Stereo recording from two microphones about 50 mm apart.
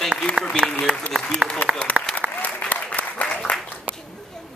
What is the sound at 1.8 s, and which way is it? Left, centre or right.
Applause, centre.